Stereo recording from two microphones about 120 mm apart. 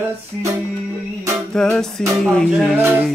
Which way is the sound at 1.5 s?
5° left (ahead or behind).